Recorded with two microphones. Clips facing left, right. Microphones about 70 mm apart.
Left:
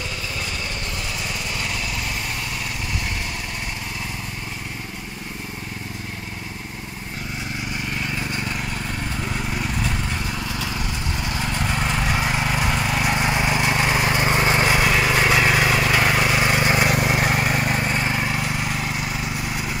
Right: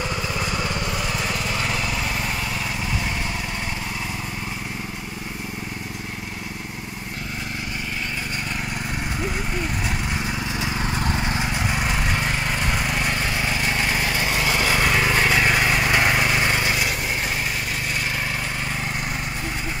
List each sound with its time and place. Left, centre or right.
9.2 s lawn mower: centre
10.2 s vehicle: right
10.8 s lawn mower: right
11.4 s vehicle: centre
13.1 s vehicle: left
14.8 s a sound: centre
16.9 s vehicle: left
18.1 s vehicle: centre